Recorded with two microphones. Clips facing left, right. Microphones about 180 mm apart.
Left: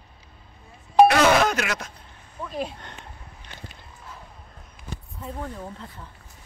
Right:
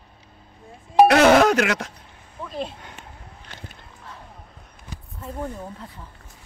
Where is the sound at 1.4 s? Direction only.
65° right (ahead or behind).